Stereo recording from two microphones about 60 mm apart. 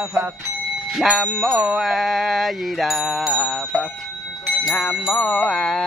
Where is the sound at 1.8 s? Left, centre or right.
Centre.